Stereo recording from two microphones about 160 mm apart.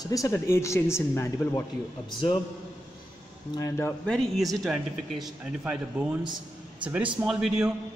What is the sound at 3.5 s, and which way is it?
Speech, 15° left (ahead or behind).